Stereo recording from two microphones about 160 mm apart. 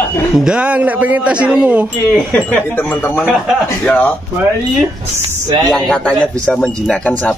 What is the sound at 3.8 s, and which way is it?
Speech, 10° left (ahead or behind).